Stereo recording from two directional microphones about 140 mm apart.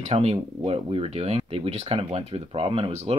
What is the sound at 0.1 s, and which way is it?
Speech, 45° right (ahead or behind).